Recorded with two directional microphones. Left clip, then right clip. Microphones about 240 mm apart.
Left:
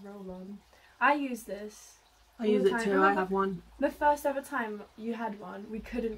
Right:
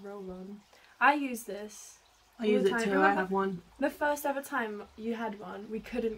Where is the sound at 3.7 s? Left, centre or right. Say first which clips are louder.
Left 4 dB; centre.